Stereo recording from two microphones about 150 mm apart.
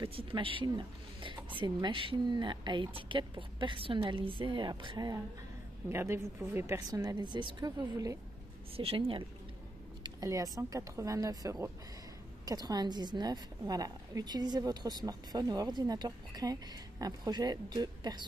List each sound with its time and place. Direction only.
0.0 s a woman's voice: 35° right (ahead or behind)
8.7 s speech: 35° right (ahead or behind)
10.0 s a woman's voice: 25° right (ahead or behind)